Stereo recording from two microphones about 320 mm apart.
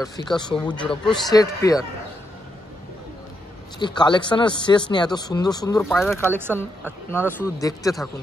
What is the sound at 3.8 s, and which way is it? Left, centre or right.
Speech, centre.